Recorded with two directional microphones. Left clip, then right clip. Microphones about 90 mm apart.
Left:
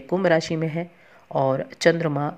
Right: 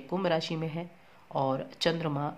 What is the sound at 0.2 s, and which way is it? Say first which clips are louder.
A woman's voice: left 9 dB; 45° left (ahead or behind).